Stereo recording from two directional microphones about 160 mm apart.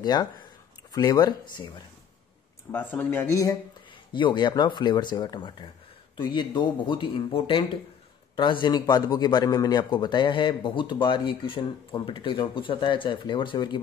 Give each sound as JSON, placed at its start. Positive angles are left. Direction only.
{"t": 0.0, "sound": "speech", "side_deg": 25}
{"t": 2.7, "sound": "speech", "side_deg": 10}
{"t": 4.1, "sound": "a man's voice", "side_deg": 30}